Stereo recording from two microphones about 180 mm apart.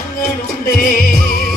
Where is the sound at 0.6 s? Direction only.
55° left (ahead or behind).